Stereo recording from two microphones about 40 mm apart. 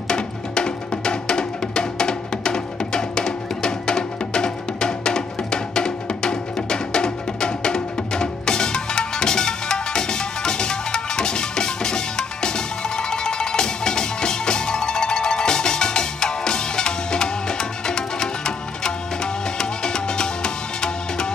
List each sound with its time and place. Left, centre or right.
0.1 s music: left